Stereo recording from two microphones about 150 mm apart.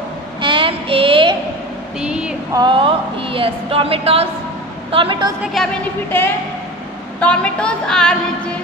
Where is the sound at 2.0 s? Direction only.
5° right (ahead or behind).